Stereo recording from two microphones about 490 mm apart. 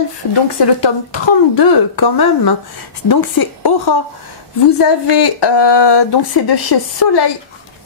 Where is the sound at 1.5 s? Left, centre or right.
Left.